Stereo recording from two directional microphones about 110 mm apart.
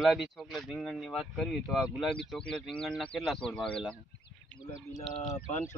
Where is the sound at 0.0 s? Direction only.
5° right (ahead or behind).